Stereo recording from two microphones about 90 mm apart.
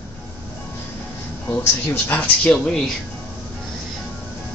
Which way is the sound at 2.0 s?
15° left (ahead or behind).